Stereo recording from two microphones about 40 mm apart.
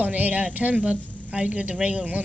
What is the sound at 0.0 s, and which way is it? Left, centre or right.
A woman's voice, right.